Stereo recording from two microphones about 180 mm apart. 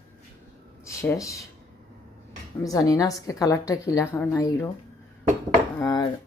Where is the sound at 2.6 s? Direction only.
20° left (ahead or behind).